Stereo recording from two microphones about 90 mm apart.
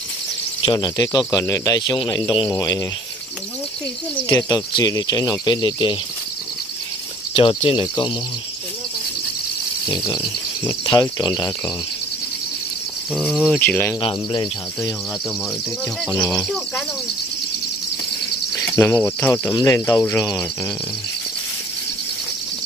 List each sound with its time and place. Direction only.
0.7 s speech: 45° left (ahead or behind)
4.3 s speech: 35° left (ahead or behind)
4.7 s speech: 50° left (ahead or behind)
7.3 s speech: 80° left
7.8 s speech: 50° left (ahead or behind)
10.9 s speech: 50° left (ahead or behind)
13.1 s cricket: 5° right (ahead or behind)
13.6 s speech: 20° left (ahead or behind)
14.0 s speech: 55° left (ahead or behind)
16.2 s speech: 10° left (ahead or behind)
18.8 s speech: 25° left (ahead or behind)
19.5 s speech: 40° left (ahead or behind)